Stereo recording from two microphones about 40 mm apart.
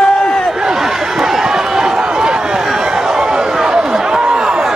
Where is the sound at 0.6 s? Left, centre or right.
Centre.